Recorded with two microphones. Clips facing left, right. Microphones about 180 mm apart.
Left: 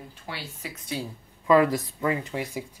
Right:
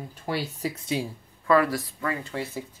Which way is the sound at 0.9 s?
20° right (ahead or behind).